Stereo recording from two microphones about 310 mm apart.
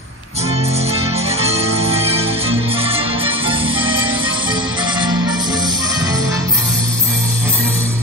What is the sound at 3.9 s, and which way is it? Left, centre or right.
Music, right.